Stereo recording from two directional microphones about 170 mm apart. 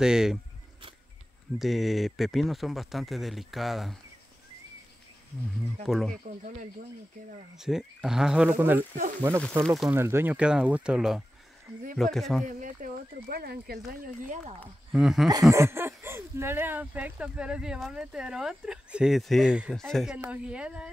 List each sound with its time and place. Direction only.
0.0 s speech: 5° right (ahead or behind)
1.6 s speech: centre (ahead or behind)
5.9 s speech: centre (ahead or behind)
6.2 s speech: 45° right (ahead or behind)
7.5 s speech: 5° right (ahead or behind)
12.4 s speech: 50° right (ahead or behind)
14.9 s speech: 5° right (ahead or behind)
15.5 s speech: 15° right (ahead or behind)